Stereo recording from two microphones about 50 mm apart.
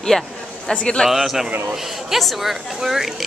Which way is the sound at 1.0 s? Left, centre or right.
Centre.